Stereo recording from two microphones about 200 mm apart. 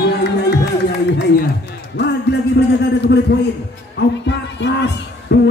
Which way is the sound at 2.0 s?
55° left (ahead or behind).